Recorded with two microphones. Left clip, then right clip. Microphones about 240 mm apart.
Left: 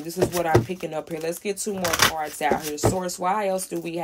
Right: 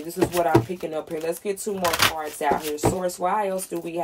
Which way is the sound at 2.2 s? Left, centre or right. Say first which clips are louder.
Even; centre.